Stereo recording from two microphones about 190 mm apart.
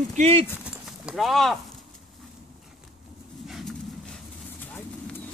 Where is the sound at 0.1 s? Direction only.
35° right (ahead or behind).